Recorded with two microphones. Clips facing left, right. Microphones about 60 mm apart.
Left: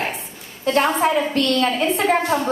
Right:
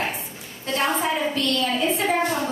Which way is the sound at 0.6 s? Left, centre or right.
Left.